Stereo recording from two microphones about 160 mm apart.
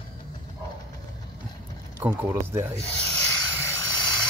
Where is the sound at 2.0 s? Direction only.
15° right (ahead or behind).